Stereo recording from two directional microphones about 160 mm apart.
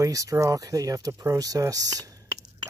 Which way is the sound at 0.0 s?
20° right (ahead or behind).